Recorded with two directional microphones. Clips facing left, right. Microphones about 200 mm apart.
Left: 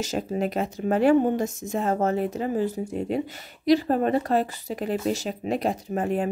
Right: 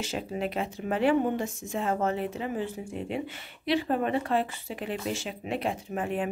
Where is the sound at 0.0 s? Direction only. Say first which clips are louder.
Left 5 dB; 40° left (ahead or behind).